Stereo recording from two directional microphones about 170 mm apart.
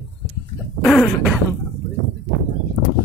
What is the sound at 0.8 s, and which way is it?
Throat clearing, centre (ahead or behind).